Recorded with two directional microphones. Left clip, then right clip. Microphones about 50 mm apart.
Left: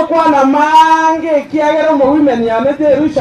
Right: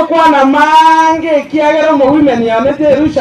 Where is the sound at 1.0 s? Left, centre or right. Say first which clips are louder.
Right 2 dB; right.